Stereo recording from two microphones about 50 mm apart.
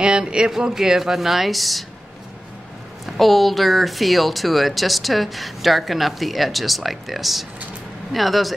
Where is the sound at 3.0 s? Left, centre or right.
Centre.